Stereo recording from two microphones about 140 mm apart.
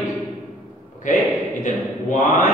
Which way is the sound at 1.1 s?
65° left (ahead or behind).